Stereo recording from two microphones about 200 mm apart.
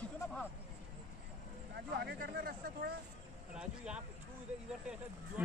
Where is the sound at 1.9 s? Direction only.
55° right (ahead or behind).